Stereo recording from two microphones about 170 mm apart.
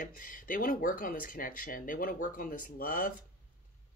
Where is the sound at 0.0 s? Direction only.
55° left (ahead or behind).